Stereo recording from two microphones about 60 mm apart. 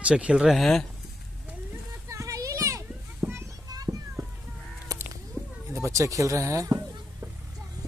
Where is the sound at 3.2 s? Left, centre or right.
Right.